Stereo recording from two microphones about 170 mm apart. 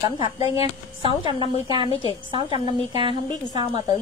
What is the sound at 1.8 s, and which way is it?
Speech, 35° left (ahead or behind).